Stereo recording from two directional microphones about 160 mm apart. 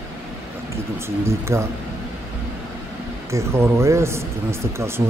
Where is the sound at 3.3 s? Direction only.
15° right (ahead or behind).